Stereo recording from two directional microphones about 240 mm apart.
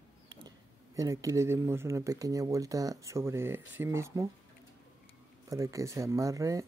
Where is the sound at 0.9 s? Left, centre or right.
Centre.